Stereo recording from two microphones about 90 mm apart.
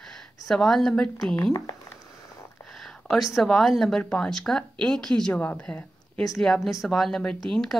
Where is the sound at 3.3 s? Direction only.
Centre (ahead or behind).